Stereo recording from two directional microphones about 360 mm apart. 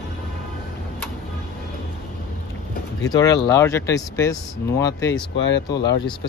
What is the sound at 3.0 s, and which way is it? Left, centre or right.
Speech, centre.